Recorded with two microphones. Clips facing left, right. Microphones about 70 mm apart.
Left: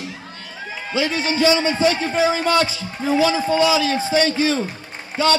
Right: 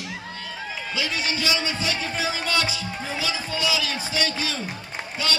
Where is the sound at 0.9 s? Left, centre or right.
Left.